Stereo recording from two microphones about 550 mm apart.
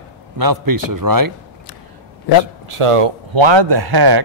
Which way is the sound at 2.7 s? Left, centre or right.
Right.